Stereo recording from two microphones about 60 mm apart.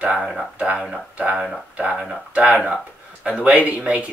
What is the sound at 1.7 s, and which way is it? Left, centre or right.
Speech, centre.